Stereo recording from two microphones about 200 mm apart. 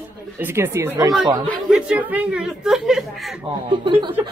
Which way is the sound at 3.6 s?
25° right (ahead or behind).